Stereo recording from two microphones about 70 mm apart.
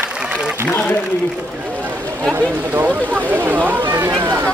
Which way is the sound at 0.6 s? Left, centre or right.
Left.